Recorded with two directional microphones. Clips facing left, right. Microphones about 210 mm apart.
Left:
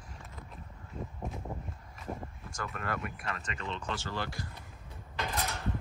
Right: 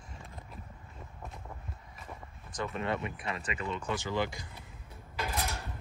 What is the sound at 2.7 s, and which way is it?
Speech, centre (ahead or behind).